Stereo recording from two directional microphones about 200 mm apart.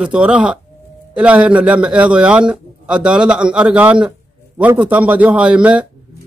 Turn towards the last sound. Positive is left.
turn(degrees=-5)  # may be behind; listen again after turning